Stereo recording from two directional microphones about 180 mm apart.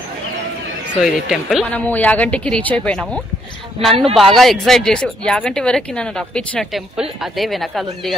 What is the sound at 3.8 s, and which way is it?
Speech, 35° right (ahead or behind).